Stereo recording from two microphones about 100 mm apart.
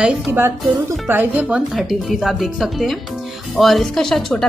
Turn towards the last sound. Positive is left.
turn(degrees=5)  # may be behind; listen again after turning